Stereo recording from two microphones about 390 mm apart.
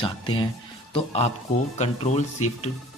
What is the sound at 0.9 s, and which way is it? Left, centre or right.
A man's voice, centre.